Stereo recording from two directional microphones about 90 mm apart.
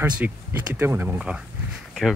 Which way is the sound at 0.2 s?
15° right (ahead or behind).